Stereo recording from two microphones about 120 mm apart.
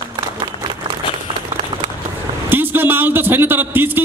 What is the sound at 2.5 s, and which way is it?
A man's voice, 15° right (ahead or behind).